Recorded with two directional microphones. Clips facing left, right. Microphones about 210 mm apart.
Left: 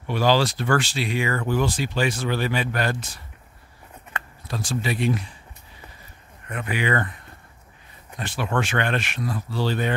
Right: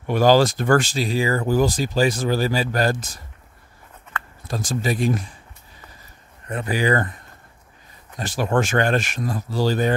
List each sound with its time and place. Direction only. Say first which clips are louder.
0.0 s speech: right 5 dB; 45° right (ahead or behind)
4.5 s speech: right 3 dB; 45° right (ahead or behind)
6.4 s speech: right 4 dB; 35° right (ahead or behind)
8.2 s speech: right 5 dB; 40° right (ahead or behind)